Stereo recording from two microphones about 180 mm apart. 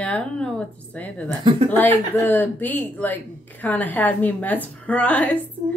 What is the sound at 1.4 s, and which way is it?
Speech, 30° right (ahead or behind).